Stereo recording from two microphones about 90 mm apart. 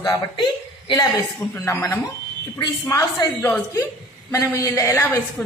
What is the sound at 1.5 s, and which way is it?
A woman's voice, 25° left (ahead or behind).